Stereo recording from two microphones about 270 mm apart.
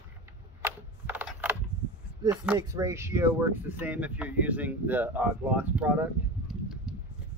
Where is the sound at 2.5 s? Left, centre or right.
Centre.